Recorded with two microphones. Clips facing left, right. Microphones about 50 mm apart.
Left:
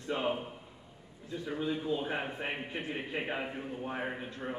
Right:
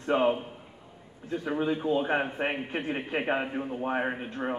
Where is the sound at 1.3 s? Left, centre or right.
Right.